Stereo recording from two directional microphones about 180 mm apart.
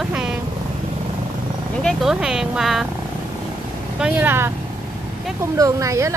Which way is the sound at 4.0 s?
10° right (ahead or behind).